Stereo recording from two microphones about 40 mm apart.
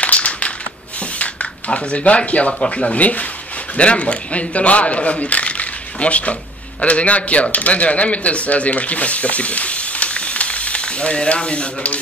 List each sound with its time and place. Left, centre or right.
0.0 s crushing: left
1.1 s speech: left